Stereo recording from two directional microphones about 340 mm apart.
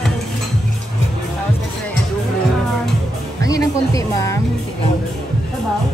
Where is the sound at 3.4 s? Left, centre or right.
Centre.